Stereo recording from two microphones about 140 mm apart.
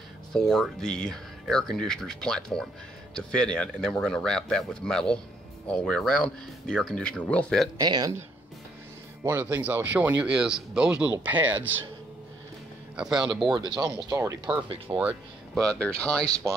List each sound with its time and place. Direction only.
0.3 s speech: 5° left (ahead or behind)
7.8 s speech: 30° right (ahead or behind)
9.2 s speech: 15° right (ahead or behind)
12.9 s speech: 5° right (ahead or behind)
13.6 s speech: 30° right (ahead or behind)
15.0 s speech: 10° right (ahead or behind)
15.6 s speech: 5° left (ahead or behind)